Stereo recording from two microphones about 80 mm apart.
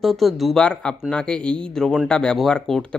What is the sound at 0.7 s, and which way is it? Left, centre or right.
Speech, centre.